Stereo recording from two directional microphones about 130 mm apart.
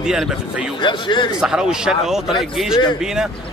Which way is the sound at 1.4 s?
5° right (ahead or behind).